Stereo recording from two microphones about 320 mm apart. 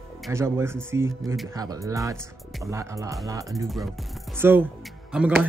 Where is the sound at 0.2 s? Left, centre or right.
Centre.